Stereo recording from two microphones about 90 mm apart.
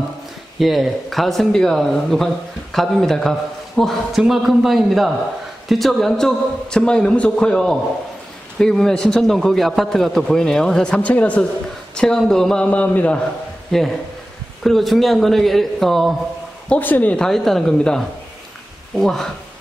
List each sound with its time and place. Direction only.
0.6 s a man's voice: centre (ahead or behind); by 13.2 s 15° left (ahead or behind)
13.7 s speech: 5° left (ahead or behind)
16.6 s a man's voice: 20° left (ahead or behind)
17.3 s speech: 5° left (ahead or behind)
19.0 s speech: 5° left (ahead or behind)